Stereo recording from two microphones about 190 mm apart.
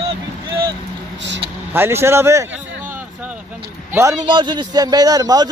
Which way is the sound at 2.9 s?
10° right (ahead or behind).